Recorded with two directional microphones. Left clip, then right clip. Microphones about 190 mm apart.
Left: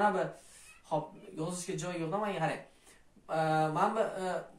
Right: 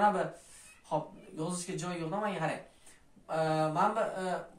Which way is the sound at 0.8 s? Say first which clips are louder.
Even; 5° right (ahead or behind).